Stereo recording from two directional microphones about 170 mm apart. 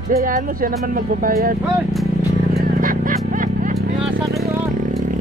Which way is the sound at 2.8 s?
55° right (ahead or behind).